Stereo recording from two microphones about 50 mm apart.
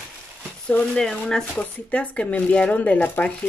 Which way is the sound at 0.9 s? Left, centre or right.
Centre.